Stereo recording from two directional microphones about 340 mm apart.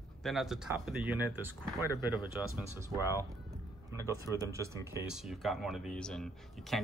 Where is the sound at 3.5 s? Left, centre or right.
Centre.